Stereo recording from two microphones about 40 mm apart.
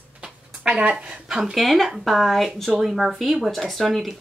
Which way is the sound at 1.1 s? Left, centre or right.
Centre.